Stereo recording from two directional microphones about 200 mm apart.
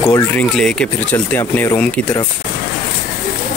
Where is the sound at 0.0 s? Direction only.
10° left (ahead or behind).